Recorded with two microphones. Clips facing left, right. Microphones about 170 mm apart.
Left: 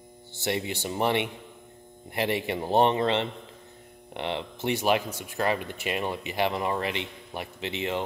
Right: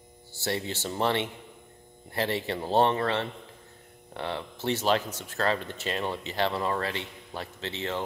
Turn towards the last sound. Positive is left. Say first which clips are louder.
# left 3 dB
turn(degrees=15)  # may be behind; listen again after turning